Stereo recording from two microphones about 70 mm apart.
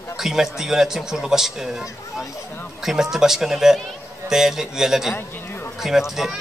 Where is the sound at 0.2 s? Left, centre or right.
Centre.